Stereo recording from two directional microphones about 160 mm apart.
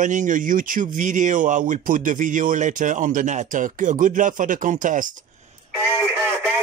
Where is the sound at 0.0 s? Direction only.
50° right (ahead or behind).